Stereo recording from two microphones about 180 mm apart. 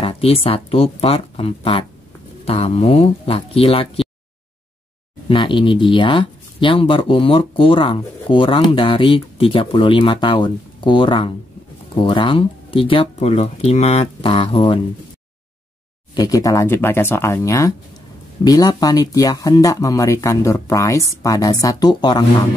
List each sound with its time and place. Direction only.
0.0 s speech: 35° left (ahead or behind)
5.3 s speech: 30° left (ahead or behind)
16.2 s speech: 20° left (ahead or behind)